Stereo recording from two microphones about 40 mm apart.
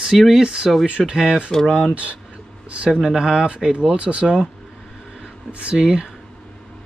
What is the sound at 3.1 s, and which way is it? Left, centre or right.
Speech, centre.